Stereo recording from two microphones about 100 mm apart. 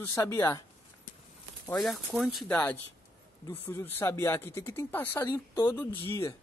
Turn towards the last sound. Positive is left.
turn(degrees=30)  # may be behind; listen again after turning